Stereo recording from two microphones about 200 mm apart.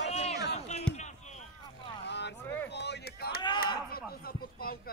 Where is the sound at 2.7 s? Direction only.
60° left (ahead or behind).